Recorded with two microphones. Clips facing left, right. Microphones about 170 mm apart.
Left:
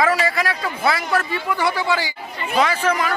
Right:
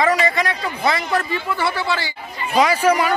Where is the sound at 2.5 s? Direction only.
15° right (ahead or behind).